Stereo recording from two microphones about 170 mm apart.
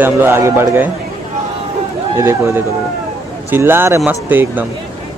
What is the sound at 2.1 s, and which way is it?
Speech, 15° right (ahead or behind).